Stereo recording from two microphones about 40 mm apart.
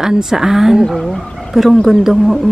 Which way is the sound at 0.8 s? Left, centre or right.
Centre.